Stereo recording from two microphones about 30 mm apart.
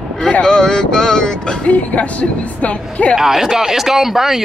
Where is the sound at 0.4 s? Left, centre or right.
Left.